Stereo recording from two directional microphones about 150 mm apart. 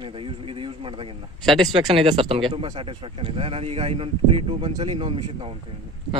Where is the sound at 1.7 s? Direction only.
40° right (ahead or behind).